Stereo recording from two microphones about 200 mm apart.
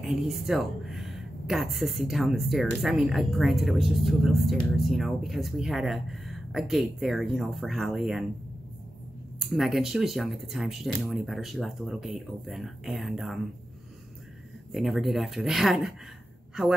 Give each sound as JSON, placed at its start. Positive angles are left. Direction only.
{"t": 0.0, "sound": "speech", "side_deg": 0}
{"t": 9.4, "sound": "speech", "side_deg": 0}
{"t": 14.7, "sound": "speech", "side_deg": 0}